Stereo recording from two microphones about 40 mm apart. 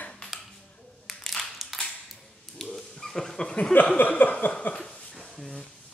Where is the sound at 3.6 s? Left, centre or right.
Left.